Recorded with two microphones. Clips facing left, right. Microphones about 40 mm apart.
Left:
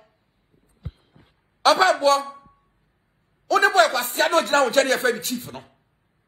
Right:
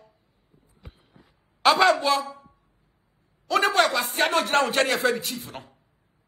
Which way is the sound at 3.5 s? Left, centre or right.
Right.